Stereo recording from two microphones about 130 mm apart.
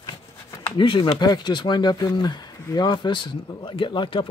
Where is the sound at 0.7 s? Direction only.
40° left (ahead or behind).